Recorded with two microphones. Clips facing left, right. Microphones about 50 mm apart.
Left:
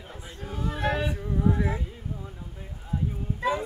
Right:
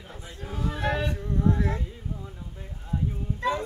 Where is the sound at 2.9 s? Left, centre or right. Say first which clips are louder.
Even; centre.